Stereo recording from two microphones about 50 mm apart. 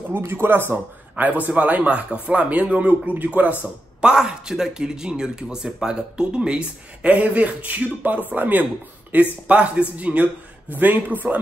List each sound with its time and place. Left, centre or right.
0.2 s a man's voice: right
4.0 s a man's voice: centre; by 11.3 s right